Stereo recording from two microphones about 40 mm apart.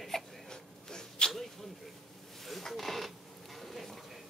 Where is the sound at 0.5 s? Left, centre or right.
Centre.